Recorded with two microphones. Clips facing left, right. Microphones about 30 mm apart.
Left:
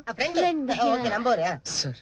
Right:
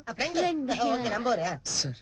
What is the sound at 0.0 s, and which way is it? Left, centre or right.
Speech, centre.